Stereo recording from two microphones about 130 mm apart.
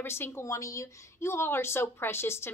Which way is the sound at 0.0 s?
20° left (ahead or behind).